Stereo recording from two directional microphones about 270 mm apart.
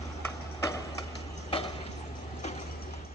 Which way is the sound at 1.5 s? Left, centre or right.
Centre.